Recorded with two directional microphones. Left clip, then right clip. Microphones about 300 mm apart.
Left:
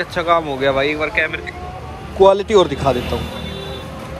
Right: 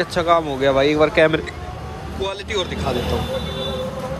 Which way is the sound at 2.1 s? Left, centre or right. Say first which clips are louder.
Left 13 dB; centre.